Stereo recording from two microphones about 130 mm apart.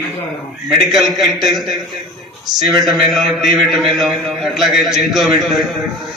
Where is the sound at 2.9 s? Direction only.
Centre (ahead or behind).